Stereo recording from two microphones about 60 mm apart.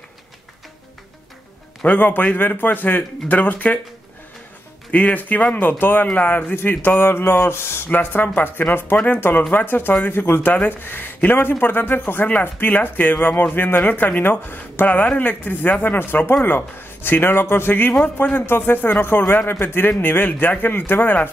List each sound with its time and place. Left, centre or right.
1.9 s speech: left
4.9 s speech: left
6.5 s speech: left
7.9 s speech: left